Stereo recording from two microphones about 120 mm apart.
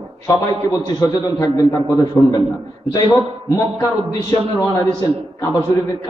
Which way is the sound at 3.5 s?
30° left (ahead or behind).